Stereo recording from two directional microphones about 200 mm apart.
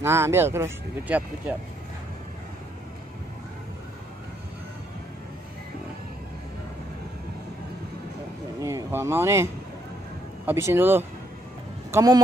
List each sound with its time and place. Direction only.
0.0 s speech: 10° right (ahead or behind)
8.6 s speech: 15° right (ahead or behind)